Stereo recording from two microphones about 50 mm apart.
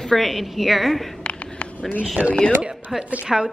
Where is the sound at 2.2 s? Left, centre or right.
Right.